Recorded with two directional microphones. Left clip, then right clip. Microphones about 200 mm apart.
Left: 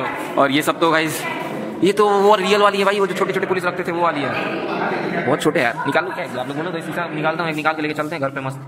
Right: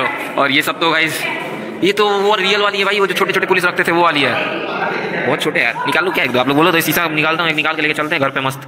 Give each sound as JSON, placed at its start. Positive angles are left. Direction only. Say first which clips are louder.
{"t": 0.4, "sound": "a man's voice", "louder": "right 2 dB", "side_deg": 10}
{"t": 5.3, "sound": "a man's voice", "louder": "right 1 dB", "side_deg": 15}
{"t": 6.1, "sound": "speech", "louder": "right 11 dB", "side_deg": -25}
{"t": 7.4, "sound": "a man's voice", "louder": "right 5 dB", "side_deg": 5}